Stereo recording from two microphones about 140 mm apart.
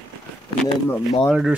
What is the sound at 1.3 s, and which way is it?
Speech, 5° right (ahead or behind).